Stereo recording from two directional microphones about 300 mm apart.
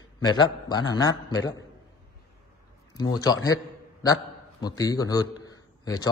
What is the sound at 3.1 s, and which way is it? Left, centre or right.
Speech, centre.